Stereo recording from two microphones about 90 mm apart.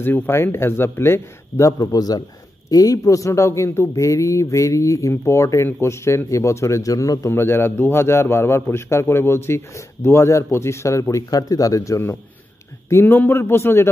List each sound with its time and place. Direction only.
0.0 s a man's voice: 25° left (ahead or behind)
12.9 s a man's voice: 20° left (ahead or behind)